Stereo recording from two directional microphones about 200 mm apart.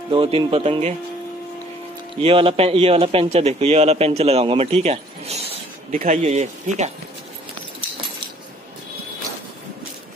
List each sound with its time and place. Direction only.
0.1 s a man's voice: 25° right (ahead or behind)
2.2 s a man's voice: 25° right (ahead or behind)